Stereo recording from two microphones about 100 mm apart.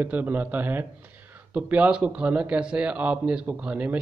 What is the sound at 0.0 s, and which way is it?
Speech, 20° right (ahead or behind).